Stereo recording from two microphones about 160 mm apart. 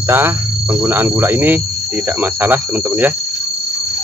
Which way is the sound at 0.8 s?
15° right (ahead or behind).